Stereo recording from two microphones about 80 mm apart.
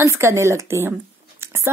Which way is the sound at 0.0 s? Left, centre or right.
Right.